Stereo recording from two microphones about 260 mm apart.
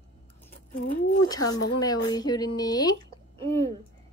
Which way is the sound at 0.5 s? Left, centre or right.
Left.